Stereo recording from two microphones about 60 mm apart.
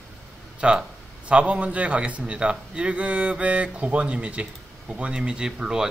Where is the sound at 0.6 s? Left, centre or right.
Centre.